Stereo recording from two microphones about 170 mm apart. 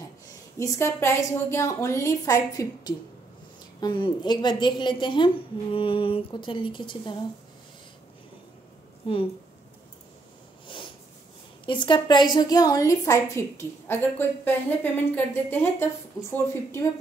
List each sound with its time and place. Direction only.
0.6 s a woman's voice: 20° left (ahead or behind)
11.6 s a woman's voice: 30° left (ahead or behind)